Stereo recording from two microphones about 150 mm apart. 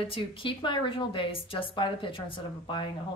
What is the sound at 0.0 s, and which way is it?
A woman's voice, 35° left (ahead or behind).